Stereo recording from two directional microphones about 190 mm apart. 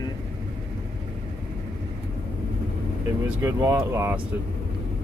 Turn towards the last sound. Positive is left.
turn(degrees=-15)  # may be behind; listen again after turning